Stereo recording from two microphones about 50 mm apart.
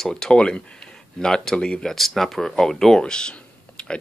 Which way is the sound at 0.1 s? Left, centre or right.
Centre.